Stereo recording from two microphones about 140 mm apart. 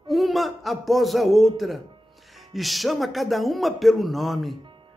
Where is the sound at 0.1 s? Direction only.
Centre (ahead or behind).